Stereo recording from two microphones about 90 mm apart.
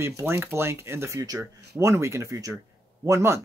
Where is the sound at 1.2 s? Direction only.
45° right (ahead or behind).